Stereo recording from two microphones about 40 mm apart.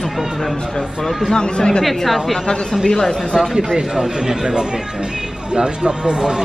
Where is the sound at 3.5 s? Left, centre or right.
Centre.